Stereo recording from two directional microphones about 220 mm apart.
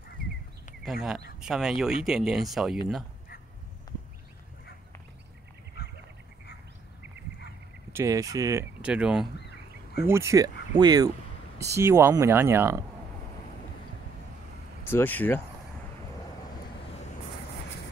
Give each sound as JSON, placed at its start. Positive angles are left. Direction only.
{"t": 1.4, "sound": "speech", "side_deg": 0}
{"t": 3.9, "sound": "a sound", "side_deg": 15}
{"t": 7.9, "sound": "speech", "side_deg": -15}
{"t": 14.9, "sound": "speech", "side_deg": 10}